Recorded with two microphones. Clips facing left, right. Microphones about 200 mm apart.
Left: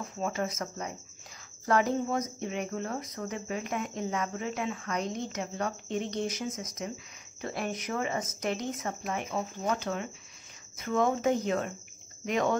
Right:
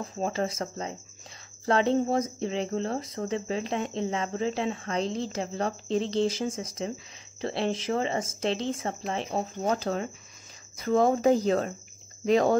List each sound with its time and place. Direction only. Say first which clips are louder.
0.0 s speech: right 3 dB; 30° right (ahead or behind)